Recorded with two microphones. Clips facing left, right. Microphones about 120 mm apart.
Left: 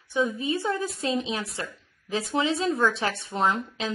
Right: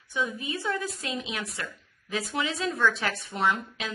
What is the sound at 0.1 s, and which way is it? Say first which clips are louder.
A woman's voice: left 5 dB; 30° left (ahead or behind).